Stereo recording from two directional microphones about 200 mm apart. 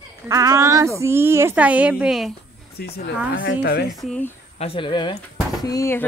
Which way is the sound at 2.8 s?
50° left (ahead or behind).